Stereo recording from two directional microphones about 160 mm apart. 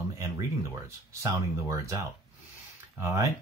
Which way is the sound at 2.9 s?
20° right (ahead or behind).